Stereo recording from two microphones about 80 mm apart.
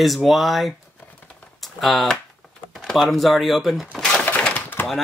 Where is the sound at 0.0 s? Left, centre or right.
Centre.